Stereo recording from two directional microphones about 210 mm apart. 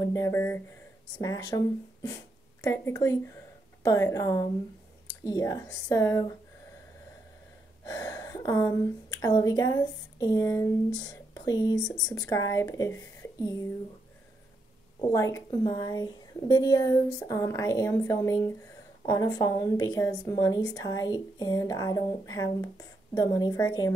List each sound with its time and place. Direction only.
0.0 s a woman's voice: 15° left (ahead or behind)
2.6 s a woman's voice: 15° left (ahead or behind)
7.8 s a woman's voice: 15° left (ahead or behind)
15.3 s a woman's voice: 15° left (ahead or behind)